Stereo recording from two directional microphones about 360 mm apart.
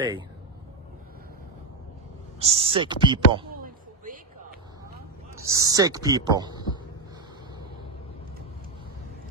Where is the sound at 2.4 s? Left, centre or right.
Centre.